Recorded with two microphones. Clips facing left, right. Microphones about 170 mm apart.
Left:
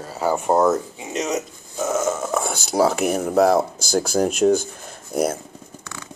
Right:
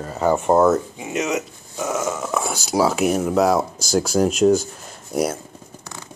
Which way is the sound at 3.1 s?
55° left (ahead or behind).